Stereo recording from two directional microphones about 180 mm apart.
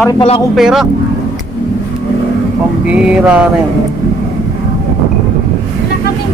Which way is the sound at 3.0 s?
5° right (ahead or behind).